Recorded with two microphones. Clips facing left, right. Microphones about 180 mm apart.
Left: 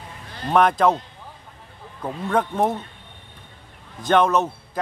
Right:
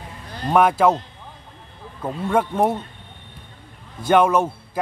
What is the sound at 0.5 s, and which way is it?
Speech, 5° right (ahead or behind).